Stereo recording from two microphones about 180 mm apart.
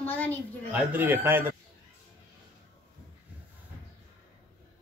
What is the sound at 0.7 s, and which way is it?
Speech, 10° right (ahead or behind).